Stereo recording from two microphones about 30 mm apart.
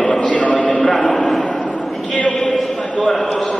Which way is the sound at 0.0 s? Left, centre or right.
Left.